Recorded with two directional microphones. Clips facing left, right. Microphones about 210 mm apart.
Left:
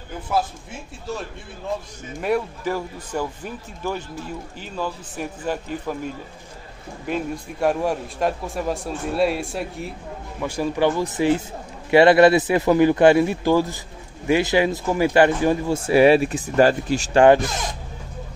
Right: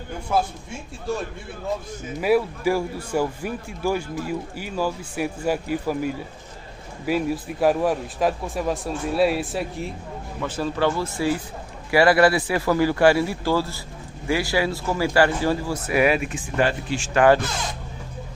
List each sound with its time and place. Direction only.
2.1 s speech: 5° right (ahead or behind)
10.4 s a man's voice: 15° left (ahead or behind); by 17.4 s 30° left (ahead or behind)